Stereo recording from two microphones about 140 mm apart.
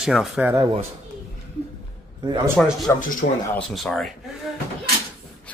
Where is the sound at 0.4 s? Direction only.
20° right (ahead or behind).